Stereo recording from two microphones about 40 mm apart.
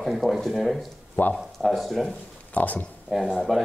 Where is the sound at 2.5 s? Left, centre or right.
Left.